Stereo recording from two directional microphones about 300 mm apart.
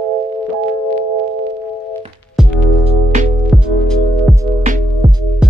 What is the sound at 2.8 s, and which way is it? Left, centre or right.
Music, right.